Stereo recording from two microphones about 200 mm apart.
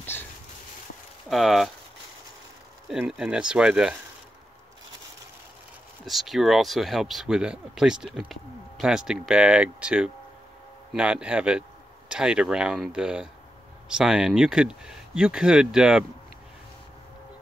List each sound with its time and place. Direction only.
1.3 s speech: centre (ahead or behind)
2.9 s speech: centre (ahead or behind)
6.0 s speech: centre (ahead or behind)